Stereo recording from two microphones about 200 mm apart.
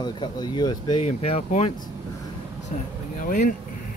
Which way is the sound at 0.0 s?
20° left (ahead or behind).